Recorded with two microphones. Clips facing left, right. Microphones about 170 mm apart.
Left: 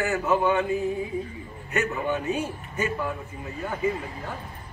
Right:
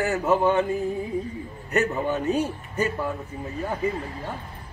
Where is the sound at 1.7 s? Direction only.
40° right (ahead or behind).